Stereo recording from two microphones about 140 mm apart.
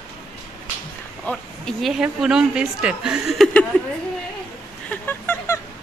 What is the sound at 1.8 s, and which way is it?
Speech, 5° right (ahead or behind).